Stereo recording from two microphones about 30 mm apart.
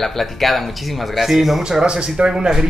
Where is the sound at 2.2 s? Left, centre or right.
Right.